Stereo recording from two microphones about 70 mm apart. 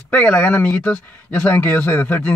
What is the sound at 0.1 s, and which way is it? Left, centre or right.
Speech, centre.